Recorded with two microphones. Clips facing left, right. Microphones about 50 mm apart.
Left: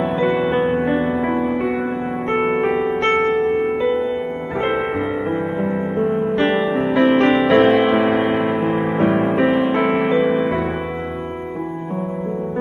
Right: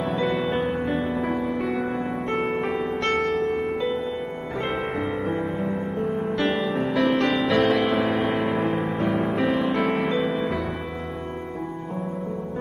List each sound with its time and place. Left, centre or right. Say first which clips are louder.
0.4 s music: left 7 dB; centre
6.0 s music: left 6 dB; left
7.1 s music: left 9 dB; left
7.8 s music: left 6 dB; centre
8.8 s music: left 7 dB; left
9.5 s music: left 6 dB; left
9.8 s music: left 6 dB; centre